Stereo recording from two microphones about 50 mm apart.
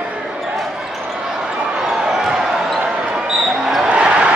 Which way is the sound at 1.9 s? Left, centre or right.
Centre.